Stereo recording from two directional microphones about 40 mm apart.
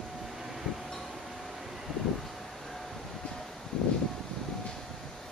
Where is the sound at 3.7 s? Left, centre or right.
Left.